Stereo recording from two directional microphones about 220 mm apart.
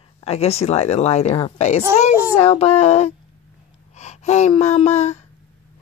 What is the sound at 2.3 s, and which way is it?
A woman's voice, 25° left (ahead or behind).